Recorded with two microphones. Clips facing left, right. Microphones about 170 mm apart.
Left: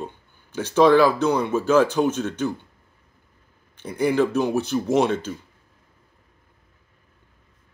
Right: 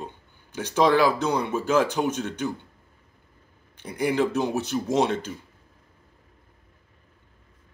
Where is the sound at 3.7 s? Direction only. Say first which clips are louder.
Left 3 dB; 15° right (ahead or behind).